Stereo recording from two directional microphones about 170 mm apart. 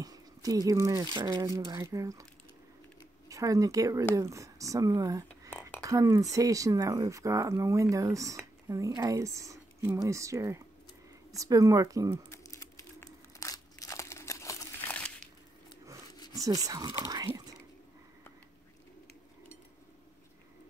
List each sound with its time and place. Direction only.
0.0 s a sound: 20° right (ahead or behind)
1.1 s speech: 25° right (ahead or behind)
3.3 s speech: 20° right (ahead or behind)
5.5 s whispering: 10° left (ahead or behind)
5.8 s speech: 20° right (ahead or behind)
12.3 s crumpling: 20° left (ahead or behind)
16.3 s speech: 20° right (ahead or behind)